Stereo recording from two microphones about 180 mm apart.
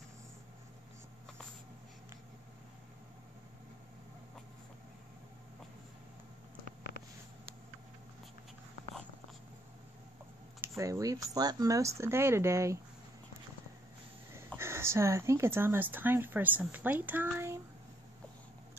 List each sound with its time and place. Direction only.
10.8 s speech: 20° right (ahead or behind)
14.6 s speech: 15° right (ahead or behind)